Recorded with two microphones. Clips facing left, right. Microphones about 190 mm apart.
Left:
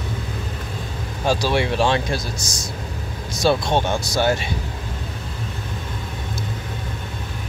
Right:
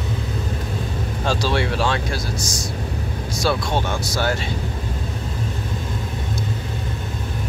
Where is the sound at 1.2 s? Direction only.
10° left (ahead or behind).